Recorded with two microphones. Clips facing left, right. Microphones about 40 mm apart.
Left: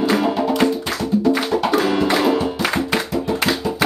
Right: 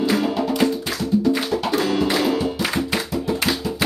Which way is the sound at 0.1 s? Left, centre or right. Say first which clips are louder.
Left 3 dB; centre.